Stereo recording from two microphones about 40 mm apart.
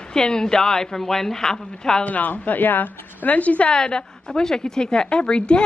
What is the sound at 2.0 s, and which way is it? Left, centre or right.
A woman's voice, left.